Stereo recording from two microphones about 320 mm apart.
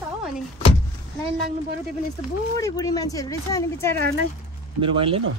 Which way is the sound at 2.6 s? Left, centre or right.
Centre.